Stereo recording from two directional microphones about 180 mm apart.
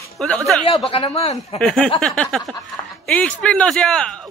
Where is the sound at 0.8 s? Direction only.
30° left (ahead or behind).